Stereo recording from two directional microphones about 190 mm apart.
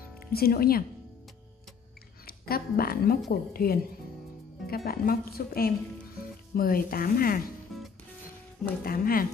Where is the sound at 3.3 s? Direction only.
50° left (ahead or behind).